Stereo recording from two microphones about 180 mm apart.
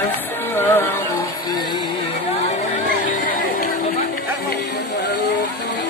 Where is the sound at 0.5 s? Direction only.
10° left (ahead or behind).